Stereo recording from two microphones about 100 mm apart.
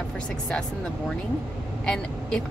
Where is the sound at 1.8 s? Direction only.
5° left (ahead or behind).